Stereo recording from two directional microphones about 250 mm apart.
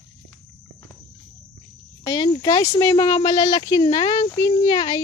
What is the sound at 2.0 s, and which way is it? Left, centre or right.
Speech, centre.